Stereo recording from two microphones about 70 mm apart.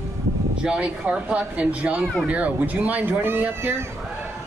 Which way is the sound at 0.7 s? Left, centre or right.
Centre.